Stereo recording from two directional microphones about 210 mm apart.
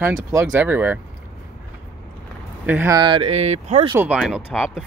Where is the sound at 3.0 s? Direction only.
25° right (ahead or behind).